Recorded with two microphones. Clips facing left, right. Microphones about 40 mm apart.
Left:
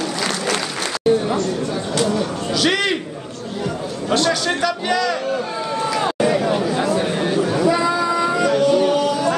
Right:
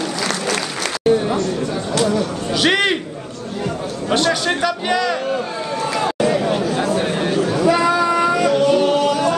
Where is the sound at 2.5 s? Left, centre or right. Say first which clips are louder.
Right 3 dB; right.